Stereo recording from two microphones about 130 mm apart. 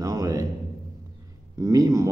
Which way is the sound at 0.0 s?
25° right (ahead or behind).